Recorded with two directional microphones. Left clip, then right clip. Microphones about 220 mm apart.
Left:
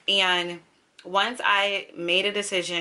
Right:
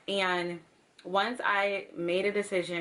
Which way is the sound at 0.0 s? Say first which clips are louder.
Left 8 dB; 5° right (ahead or behind).